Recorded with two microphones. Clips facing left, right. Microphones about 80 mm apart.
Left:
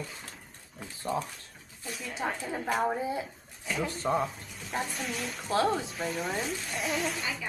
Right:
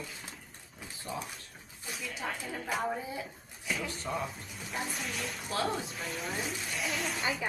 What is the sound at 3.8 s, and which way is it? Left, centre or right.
Speech, left.